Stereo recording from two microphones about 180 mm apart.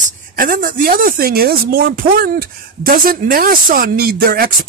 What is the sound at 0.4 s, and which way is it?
Speech, 50° right (ahead or behind).